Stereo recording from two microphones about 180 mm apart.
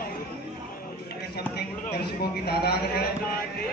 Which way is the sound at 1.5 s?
60° left (ahead or behind).